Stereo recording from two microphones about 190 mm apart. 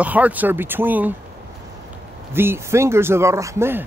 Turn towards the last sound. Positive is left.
turn(degrees=-15)  # may be behind; listen again after turning